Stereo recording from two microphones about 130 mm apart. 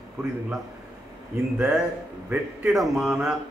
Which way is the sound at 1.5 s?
10° right (ahead or behind).